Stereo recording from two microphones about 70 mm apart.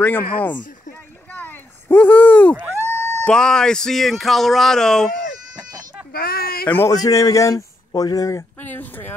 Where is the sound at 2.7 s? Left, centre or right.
Left.